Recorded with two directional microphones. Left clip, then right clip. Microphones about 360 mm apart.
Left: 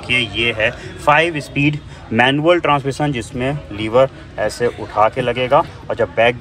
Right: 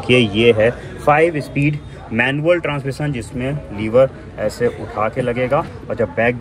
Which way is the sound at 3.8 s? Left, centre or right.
Centre.